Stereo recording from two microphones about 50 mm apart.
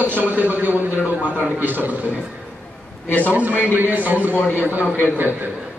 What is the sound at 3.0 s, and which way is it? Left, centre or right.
Speech, left.